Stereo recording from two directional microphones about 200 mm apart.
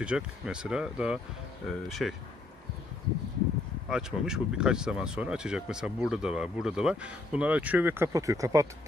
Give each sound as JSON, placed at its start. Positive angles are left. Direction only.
{"t": 0.0, "sound": "speech", "side_deg": -5}
{"t": 3.9, "sound": "speech", "side_deg": -5}